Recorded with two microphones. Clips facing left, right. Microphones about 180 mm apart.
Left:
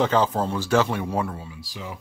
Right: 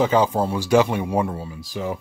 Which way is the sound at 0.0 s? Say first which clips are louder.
Right 3 dB; 10° right (ahead or behind).